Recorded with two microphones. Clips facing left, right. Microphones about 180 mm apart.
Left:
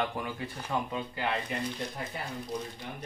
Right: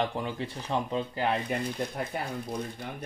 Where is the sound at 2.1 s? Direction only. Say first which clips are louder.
Right 7 dB; 55° right (ahead or behind).